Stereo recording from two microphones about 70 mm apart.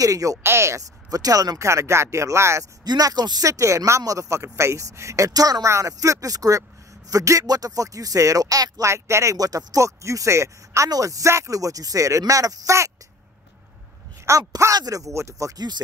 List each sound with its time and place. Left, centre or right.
0.0 s speech: right
0.4 s speech: right
1.1 s speech: right
1.7 s speech: right
2.8 s speech: right
3.4 s speech: right
5.7 s speech: right
8.9 s speech: right
10.9 s speech: right
14.2 s speech: right
14.8 s speech: right